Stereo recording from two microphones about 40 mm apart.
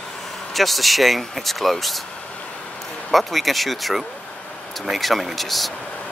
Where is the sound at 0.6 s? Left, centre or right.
Centre.